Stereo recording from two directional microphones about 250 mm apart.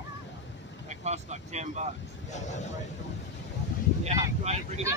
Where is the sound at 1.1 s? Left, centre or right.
Right.